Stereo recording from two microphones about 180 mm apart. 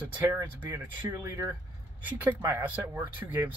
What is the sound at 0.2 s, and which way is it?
Speech, 15° right (ahead or behind).